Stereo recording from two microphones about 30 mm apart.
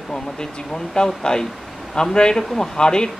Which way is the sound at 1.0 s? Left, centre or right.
Left.